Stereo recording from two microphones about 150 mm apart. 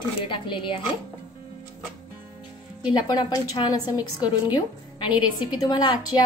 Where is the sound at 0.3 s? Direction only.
35° left (ahead or behind).